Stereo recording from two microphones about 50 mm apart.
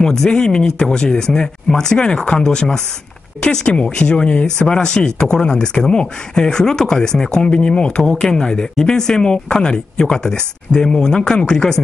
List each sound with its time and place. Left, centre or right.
0.0 s speech: centre